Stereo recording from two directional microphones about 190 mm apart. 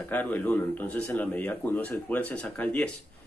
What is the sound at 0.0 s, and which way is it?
Speech, 10° left (ahead or behind).